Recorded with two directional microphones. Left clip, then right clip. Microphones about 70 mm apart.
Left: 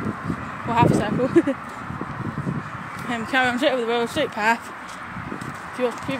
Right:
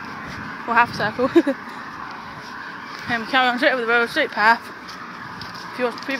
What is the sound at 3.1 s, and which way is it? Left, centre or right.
Speech, left.